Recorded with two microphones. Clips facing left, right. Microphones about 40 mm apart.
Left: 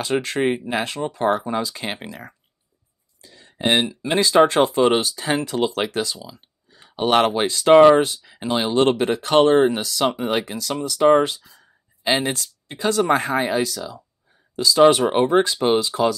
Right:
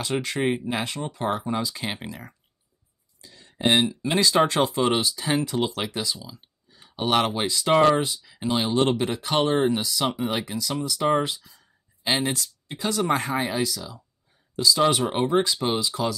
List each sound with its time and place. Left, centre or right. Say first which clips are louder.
0.0 s speech: left 4 dB; left
1.8 s speech: left 2 dB; left
2.0 s speech: left 2 dB; left
3.2 s a sound: left 2 dB; left
3.5 s speech: left 1 dB; left
5.4 s speech: left 3 dB; left
5.9 s speech: left 4 dB; left
6.8 s a sound: left 5 dB; left
7.2 s speech: left 6 dB; left
7.7 s speech: left 8 dB; left
8.2 s speech: left 3 dB; left
11.0 s speech: left 8 dB; left
11.2 s speech: left 3 dB; left
14.9 s speech: left 6 dB; left